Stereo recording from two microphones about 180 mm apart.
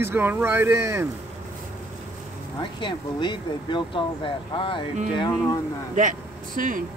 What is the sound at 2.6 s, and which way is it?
Speech, 25° left (ahead or behind).